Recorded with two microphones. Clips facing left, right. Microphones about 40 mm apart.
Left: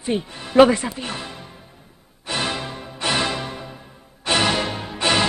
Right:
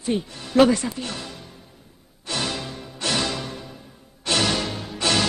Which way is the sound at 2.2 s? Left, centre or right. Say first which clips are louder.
Left 3 dB; left.